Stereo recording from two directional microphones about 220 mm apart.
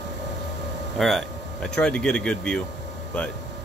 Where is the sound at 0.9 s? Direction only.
Centre (ahead or behind).